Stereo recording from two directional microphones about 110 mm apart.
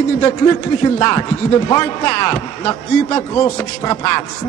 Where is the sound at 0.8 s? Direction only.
30° left (ahead or behind).